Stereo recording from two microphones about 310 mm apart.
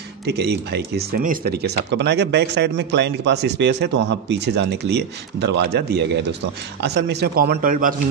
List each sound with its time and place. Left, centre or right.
0.3 s speech: right